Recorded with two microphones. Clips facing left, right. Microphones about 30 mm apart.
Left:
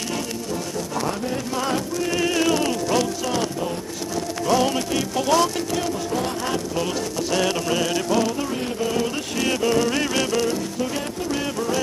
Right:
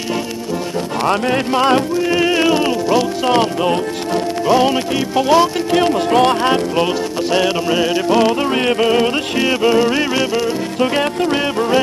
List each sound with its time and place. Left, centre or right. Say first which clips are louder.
1.0 s speech: right 10 dB; right
2.0 s music: right 7 dB; right
3.3 s speech: right 10 dB; right
4.5 s music: right 6 dB; right
5.7 s speech: right 11 dB; right
7.2 s music: right 6 dB; right
8.2 s speech: right 9 dB; right
9.4 s music: right 6 dB; right